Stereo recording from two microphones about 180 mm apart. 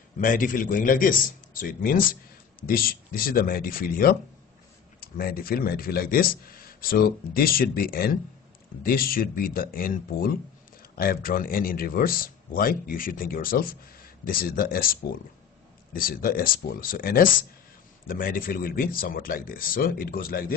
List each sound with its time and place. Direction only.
0.2 s a man's voice: 50° left (ahead or behind)